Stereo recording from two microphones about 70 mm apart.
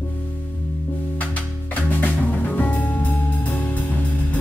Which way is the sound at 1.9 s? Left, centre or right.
Left.